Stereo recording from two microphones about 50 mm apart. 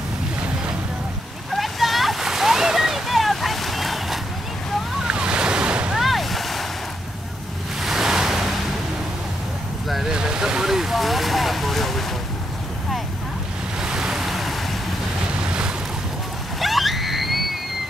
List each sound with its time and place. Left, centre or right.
1.5 s splash: centre
5.0 s waves: centre
5.9 s a sound: centre
7.8 s waves: centre
10.0 s vehicle: centre
13.7 s waves: centre
15.4 s boat: centre
16.5 s a sound: centre